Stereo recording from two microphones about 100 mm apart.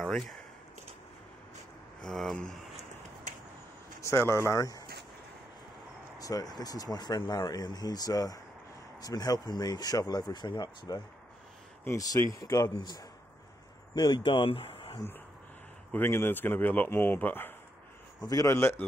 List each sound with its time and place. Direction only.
0.0 s speech: 5° left (ahead or behind)
2.0 s speech: centre (ahead or behind)
4.0 s speech: 25° left (ahead or behind)
6.1 s speech: 40° left (ahead or behind)
12.3 s a man's voice: 35° left (ahead or behind); by 15.0 s 65° left (ahead or behind)
15.9 s speech: 20° left (ahead or behind)
18.2 s speech: 35° left (ahead or behind)